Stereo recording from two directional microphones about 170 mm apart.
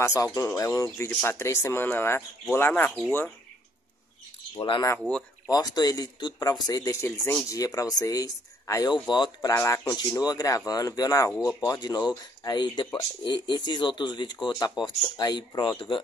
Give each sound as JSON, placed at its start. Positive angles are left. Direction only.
{"t": 0.0, "sound": "speech", "side_deg": 20}
{"t": 4.6, "sound": "speech", "side_deg": 25}
{"t": 7.1, "sound": "speech", "side_deg": 5}
{"t": 7.4, "sound": "speech", "side_deg": 20}
{"t": 9.5, "sound": "speech", "side_deg": 15}